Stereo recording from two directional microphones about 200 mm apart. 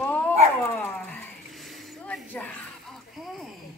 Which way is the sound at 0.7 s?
10° left (ahead or behind).